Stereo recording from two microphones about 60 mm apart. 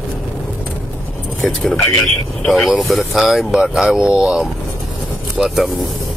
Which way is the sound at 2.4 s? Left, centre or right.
Centre.